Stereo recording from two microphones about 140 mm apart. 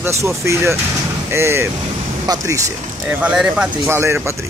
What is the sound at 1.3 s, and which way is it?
Speech, 20° right (ahead or behind).